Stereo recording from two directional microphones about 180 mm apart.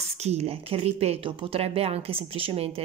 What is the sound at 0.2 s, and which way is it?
Speech, 35° right (ahead or behind).